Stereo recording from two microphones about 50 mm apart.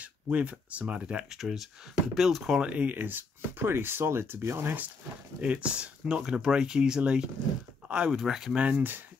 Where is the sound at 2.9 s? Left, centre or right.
Right.